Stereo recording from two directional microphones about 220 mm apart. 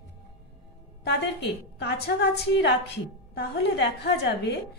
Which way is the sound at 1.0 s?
50° left (ahead or behind).